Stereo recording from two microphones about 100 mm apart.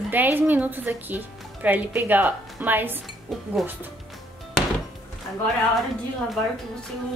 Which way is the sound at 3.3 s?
Centre (ahead or behind).